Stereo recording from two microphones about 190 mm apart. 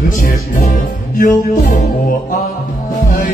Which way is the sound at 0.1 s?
40° left (ahead or behind).